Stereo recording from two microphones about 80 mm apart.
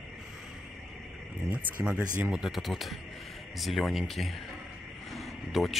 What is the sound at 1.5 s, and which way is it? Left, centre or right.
Speech, centre.